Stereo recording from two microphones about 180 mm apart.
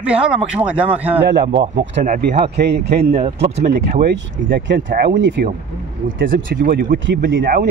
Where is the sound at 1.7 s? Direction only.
80° right.